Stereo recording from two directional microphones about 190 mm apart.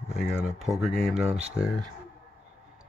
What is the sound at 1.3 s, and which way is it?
Speech, 35° right (ahead or behind).